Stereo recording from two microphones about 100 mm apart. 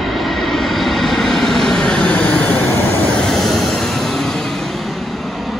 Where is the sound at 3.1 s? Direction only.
5° left (ahead or behind).